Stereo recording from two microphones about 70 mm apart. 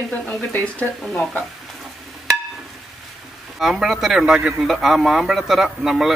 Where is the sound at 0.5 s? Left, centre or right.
Left.